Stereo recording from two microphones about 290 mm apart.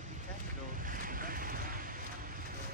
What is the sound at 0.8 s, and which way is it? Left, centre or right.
Vehicle, right.